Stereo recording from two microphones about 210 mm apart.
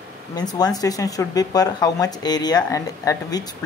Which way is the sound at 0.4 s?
20° left (ahead or behind).